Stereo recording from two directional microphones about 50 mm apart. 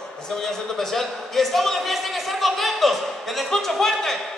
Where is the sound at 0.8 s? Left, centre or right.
Centre.